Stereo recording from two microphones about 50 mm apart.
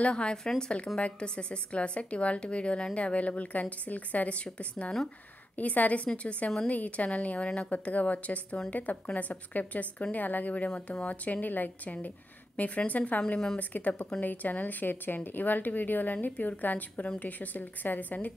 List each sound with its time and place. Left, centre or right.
0.0 s a woman's voice: centre